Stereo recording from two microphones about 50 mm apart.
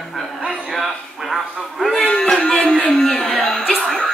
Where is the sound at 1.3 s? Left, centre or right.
Centre.